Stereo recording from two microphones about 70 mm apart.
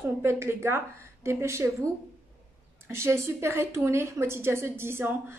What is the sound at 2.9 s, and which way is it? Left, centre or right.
A woman's voice, right.